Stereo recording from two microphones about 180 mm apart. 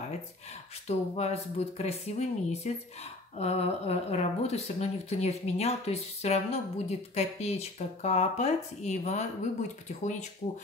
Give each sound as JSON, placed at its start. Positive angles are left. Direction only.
{"t": 0.8, "sound": "speech", "side_deg": 35}